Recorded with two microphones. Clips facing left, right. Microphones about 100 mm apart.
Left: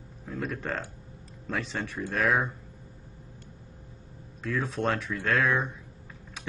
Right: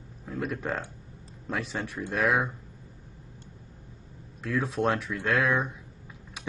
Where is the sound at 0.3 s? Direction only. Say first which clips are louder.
Right 1 dB; 10° right (ahead or behind).